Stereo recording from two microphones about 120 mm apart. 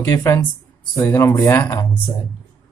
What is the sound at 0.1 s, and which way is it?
Speech, 25° left (ahead or behind).